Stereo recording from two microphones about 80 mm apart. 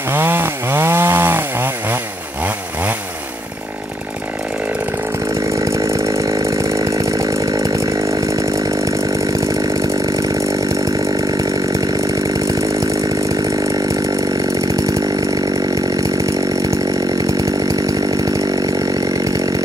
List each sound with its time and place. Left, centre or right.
0.1 s chainsaw: right
5.5 s chainsaw: right